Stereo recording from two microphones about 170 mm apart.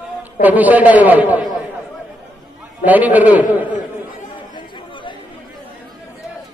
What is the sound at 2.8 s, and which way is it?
Speech, 10° right (ahead or behind).